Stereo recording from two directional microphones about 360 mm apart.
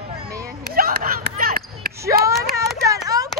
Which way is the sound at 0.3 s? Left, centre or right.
Centre.